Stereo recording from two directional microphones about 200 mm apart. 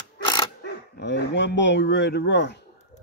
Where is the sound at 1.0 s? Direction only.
60° left (ahead or behind).